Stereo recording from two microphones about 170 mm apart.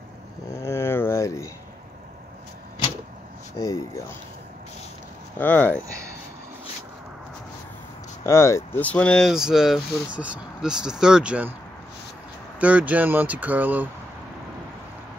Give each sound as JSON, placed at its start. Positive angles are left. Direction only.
{"t": 0.6, "sound": "a sound", "side_deg": 15}
{"t": 3.5, "sound": "speech", "side_deg": 20}
{"t": 5.4, "sound": "speech", "side_deg": 10}
{"t": 8.2, "sound": "speech", "side_deg": 15}
{"t": 12.5, "sound": "speech", "side_deg": -10}